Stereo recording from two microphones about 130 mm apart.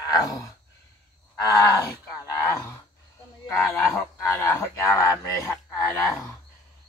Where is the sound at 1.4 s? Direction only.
30° left (ahead or behind).